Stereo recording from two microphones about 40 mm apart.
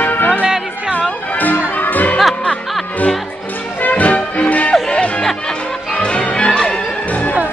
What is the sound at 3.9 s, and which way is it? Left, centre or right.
Music, left.